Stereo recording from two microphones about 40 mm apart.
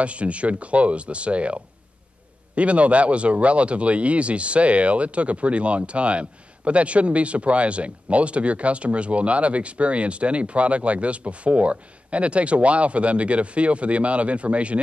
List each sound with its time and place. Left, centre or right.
0.0 s speech: right